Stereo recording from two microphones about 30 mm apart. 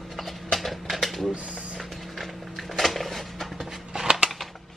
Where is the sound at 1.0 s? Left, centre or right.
Centre.